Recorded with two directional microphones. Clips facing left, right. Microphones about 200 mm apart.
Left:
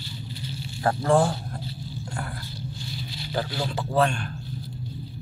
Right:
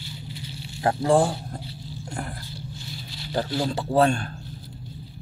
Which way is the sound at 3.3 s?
30° right (ahead or behind).